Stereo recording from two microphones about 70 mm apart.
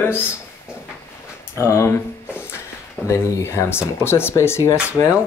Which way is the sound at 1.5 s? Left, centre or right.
Left.